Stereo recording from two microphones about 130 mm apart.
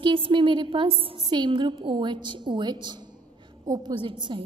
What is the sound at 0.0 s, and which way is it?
A woman's voice, 40° right (ahead or behind).